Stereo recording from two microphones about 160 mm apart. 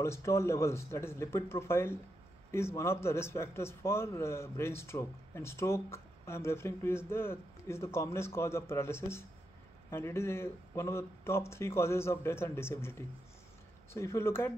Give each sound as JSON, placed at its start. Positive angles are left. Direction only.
{"t": 0.0, "sound": "a man's voice", "side_deg": 15}
{"t": 13.9, "sound": "a man's voice", "side_deg": 15}